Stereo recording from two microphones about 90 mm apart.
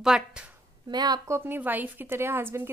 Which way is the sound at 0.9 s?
50° right (ahead or behind).